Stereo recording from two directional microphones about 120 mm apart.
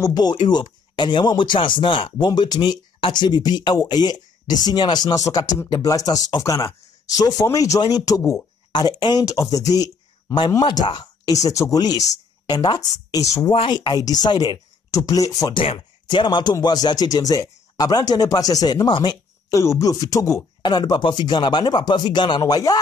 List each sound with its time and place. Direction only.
0.0 s speech: 35° left (ahead or behind)
13.5 s speech: 40° left (ahead or behind)
15.5 s speech: 45° left (ahead or behind)
19.5 s speech: 25° left (ahead or behind)